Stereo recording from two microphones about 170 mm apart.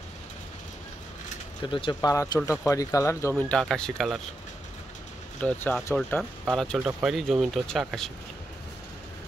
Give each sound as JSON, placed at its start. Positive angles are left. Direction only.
{"t": 1.6, "sound": "speech", "side_deg": 30}
{"t": 5.4, "sound": "speech", "side_deg": 10}
{"t": 6.8, "sound": "speech", "side_deg": -15}
{"t": 7.1, "sound": "speech", "side_deg": 0}